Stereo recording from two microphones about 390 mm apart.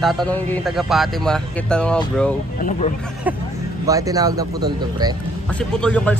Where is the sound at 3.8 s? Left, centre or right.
Centre.